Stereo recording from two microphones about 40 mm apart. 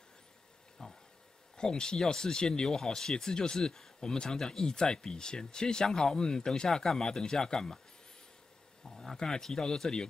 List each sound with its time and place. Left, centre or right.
0.8 s speech: centre
8.8 s speech: centre